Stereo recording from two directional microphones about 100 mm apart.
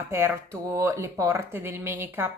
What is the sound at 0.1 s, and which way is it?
Speech, 25° right (ahead or behind).